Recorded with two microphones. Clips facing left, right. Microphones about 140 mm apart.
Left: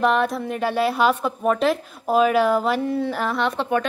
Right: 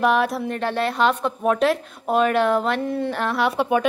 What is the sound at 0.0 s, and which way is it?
A woman's voice, centre (ahead or behind).